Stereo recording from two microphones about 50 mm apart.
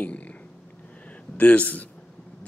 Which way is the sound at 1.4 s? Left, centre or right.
Left.